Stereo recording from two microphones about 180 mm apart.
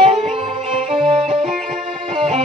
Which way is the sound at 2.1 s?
35° right (ahead or behind).